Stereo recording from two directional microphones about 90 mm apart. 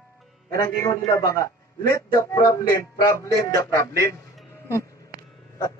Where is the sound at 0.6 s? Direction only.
40° left (ahead or behind).